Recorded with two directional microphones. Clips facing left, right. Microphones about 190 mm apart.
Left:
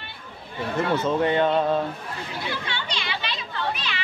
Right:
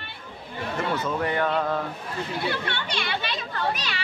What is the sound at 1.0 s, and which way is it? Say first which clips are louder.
Speech: left 6 dB; 25° left (ahead or behind).